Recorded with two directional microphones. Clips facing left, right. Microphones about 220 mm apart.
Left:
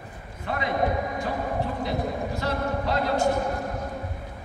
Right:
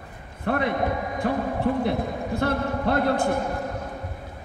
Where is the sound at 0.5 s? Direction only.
55° right (ahead or behind).